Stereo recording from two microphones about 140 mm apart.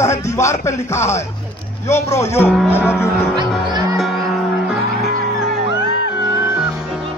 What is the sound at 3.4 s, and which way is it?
Music, 30° right (ahead or behind).